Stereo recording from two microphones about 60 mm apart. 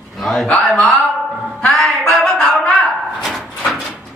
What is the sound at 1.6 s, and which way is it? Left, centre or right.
Music, centre.